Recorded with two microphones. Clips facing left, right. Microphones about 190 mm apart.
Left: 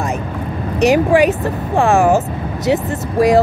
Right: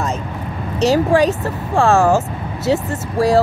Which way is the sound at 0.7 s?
15° left (ahead or behind).